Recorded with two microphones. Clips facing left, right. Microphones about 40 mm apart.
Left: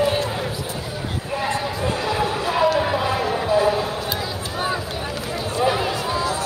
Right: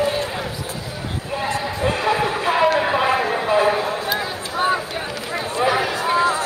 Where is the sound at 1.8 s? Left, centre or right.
Right.